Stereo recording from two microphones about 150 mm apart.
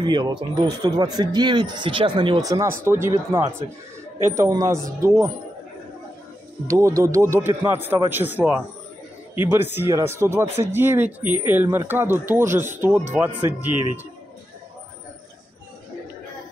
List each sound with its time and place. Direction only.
0.0 s speech: 30° right (ahead or behind)
6.7 s speech: 20° right (ahead or behind)